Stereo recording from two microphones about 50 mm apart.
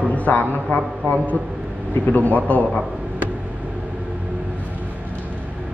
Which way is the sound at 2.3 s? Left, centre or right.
Left.